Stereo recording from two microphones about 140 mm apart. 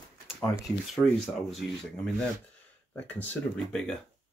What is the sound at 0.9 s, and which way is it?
Speech, centre (ahead or behind).